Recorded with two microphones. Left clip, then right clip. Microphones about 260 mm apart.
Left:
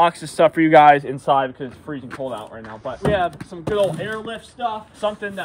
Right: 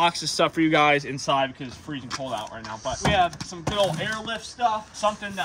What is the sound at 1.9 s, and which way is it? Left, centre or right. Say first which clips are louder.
Speech: left 2 dB; centre.